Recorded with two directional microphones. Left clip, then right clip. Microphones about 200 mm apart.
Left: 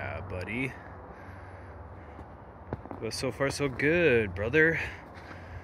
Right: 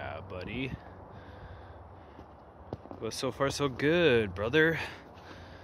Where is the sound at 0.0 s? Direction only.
5° right (ahead or behind).